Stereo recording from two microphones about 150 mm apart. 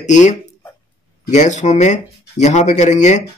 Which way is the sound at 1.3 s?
55° left (ahead or behind).